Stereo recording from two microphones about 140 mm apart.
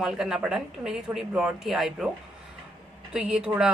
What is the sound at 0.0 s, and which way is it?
A woman's voice, 5° right (ahead or behind).